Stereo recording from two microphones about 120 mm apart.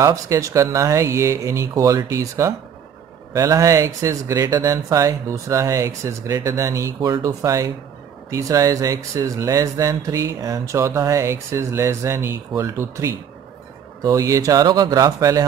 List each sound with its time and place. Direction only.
0.0 s speech: 25° right (ahead or behind)